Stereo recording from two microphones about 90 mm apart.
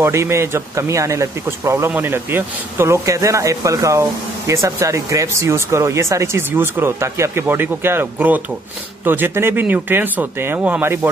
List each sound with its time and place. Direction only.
0.0 s speech: 30° right (ahead or behind)